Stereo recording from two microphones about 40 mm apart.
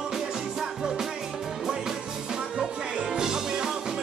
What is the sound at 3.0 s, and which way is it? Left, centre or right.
Music, centre.